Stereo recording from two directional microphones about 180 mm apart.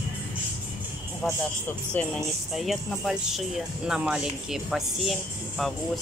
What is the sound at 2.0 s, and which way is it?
Speech, centre (ahead or behind).